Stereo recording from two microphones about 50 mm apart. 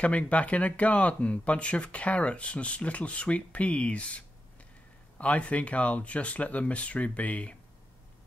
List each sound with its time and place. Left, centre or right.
0.0 s speech: left